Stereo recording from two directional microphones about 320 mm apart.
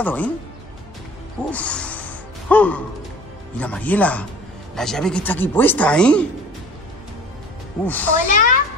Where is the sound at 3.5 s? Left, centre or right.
Centre.